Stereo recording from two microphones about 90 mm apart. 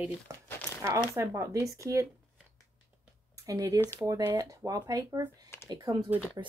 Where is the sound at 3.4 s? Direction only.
40° right (ahead or behind).